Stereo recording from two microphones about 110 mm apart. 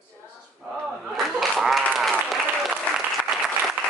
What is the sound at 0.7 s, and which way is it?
Applause, centre (ahead or behind).